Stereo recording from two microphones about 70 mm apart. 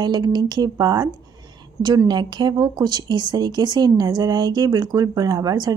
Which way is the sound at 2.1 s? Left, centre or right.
Right.